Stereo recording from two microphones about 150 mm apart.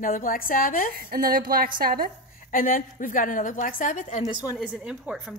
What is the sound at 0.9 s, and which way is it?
Speech, 80° right.